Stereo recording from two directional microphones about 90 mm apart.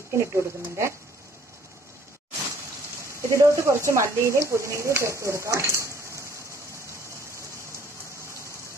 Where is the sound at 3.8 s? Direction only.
30° right (ahead or behind).